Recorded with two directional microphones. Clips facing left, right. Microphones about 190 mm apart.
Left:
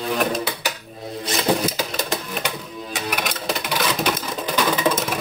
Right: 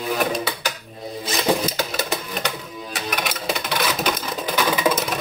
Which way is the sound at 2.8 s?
Centre (ahead or behind).